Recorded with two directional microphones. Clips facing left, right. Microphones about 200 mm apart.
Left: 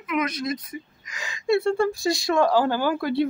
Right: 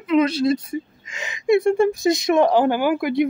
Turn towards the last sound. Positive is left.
turn(degrees=-15)  # may be behind; listen again after turning